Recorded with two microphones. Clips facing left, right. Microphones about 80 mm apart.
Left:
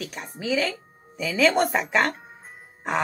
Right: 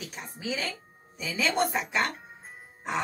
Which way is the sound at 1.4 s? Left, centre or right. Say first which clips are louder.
Left 6 dB; left.